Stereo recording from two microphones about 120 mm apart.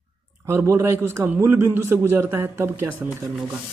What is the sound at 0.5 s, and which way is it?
Speech, 20° right (ahead or behind).